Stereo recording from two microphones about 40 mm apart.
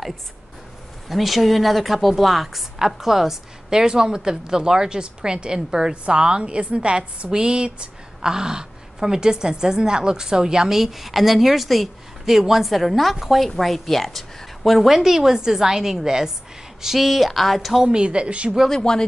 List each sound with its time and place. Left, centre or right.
1.0 s a woman's voice: centre
3.8 s a woman's voice: centre
10.8 s a woman's voice: centre
17.8 s a woman's voice: right
18.7 s speech: centre